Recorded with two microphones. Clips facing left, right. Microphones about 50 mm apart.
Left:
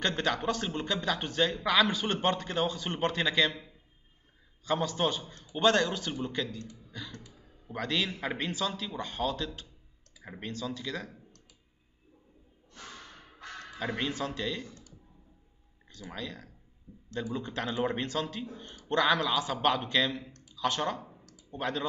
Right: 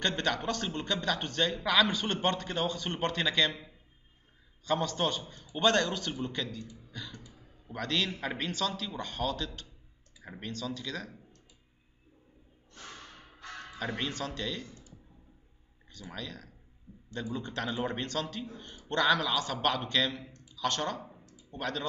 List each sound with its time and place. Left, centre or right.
0.0 s a man's voice: centre
4.6 s a man's voice: centre
6.9 s a sound: centre
7.6 s a man's voice: centre
13.7 s a man's voice: centre
14.7 s clicking: left
15.9 s a man's voice: centre